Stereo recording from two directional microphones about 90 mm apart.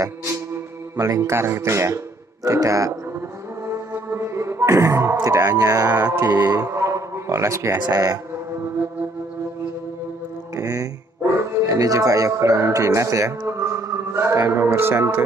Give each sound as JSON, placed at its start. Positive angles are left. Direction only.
{"t": 0.9, "sound": "speech", "side_deg": -40}
{"t": 3.6, "sound": "music", "side_deg": -30}
{"t": 5.2, "sound": "speech", "side_deg": -35}
{"t": 10.5, "sound": "speech", "side_deg": -40}